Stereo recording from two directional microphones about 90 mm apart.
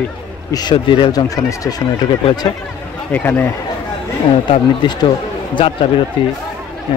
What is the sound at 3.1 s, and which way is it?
Speech, 20° left (ahead or behind).